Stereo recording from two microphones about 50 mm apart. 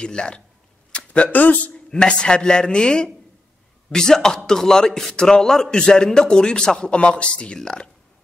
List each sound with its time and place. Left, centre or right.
0.0 s speech: centre
1.9 s a man's voice: centre